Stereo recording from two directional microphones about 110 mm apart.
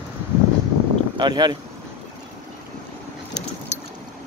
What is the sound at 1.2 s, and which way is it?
Speech, 40° right (ahead or behind).